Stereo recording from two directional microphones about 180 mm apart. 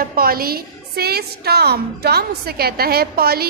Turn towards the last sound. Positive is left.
turn(degrees=-60)  # may be behind; listen again after turning